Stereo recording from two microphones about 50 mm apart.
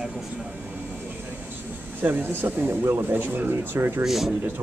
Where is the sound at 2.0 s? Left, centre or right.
Right.